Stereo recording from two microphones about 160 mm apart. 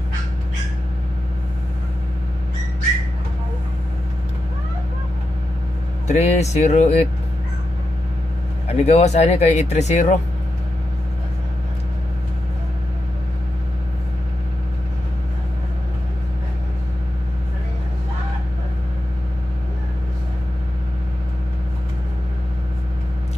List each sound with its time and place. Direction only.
6.0 s speech: 45° left (ahead or behind)
8.6 s speech: 40° left (ahead or behind)